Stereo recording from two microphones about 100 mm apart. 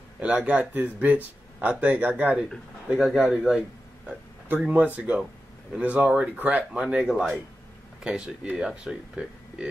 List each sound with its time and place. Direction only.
0.2 s speech: 10° right (ahead or behind)
2.9 s speech: centre (ahead or behind)
4.6 s speech: 15° right (ahead or behind)